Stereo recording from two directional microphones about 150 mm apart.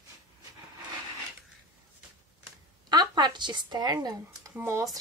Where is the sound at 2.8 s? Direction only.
30° right (ahead or behind).